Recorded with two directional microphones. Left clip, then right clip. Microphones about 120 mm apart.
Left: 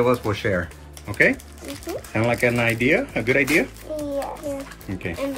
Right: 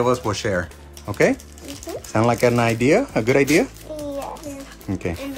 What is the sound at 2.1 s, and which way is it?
Speech, 30° right (ahead or behind).